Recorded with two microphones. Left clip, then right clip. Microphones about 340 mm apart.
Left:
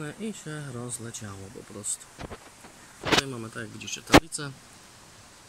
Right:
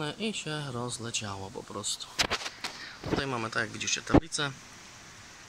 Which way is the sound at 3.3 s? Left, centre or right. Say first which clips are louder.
Right 6 dB; centre.